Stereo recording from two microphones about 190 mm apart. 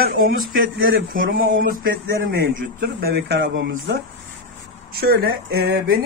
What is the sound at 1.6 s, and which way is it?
Speech, 90° right.